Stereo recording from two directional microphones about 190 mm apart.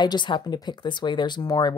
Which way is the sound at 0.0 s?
25° left (ahead or behind).